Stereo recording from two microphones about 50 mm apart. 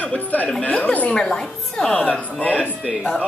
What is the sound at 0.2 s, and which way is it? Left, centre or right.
Speech, left.